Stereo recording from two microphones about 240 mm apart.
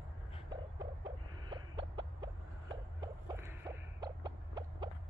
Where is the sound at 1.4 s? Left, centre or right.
Centre.